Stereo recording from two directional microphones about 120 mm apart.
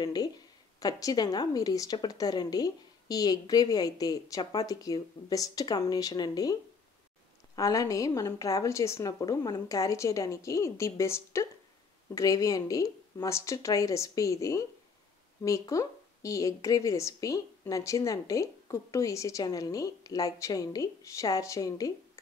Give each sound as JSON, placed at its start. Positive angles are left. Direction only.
{"t": 0.0, "sound": "a woman's voice", "side_deg": 35}